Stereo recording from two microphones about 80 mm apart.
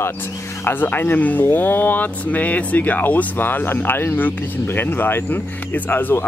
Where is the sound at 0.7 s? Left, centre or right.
Left.